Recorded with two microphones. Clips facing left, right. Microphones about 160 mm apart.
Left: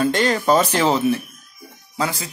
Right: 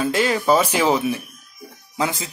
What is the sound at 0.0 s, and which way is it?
Speech, 5° right (ahead or behind).